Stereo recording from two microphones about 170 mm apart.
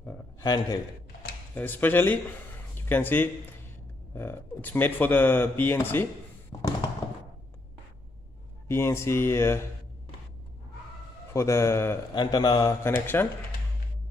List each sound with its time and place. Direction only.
0.4 s a man's voice: 20° left (ahead or behind)
1.5 s speech: 10° left (ahead or behind)
6.5 s a sound: 25° left (ahead or behind)
8.6 s speech: 15° left (ahead or behind)
11.3 s a man's voice: 15° left (ahead or behind)
12.9 s speech: 10° left (ahead or behind)